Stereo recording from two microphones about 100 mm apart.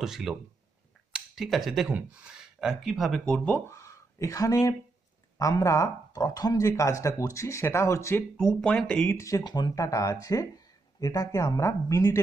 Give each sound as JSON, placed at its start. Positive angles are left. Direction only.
{"t": 0.0, "sound": "speech", "side_deg": -5}
{"t": 3.3, "sound": "speech", "side_deg": 15}
{"t": 8.4, "sound": "speech", "side_deg": 10}
{"t": 9.1, "sound": "speech", "side_deg": 30}
{"t": 9.4, "sound": "speech", "side_deg": 45}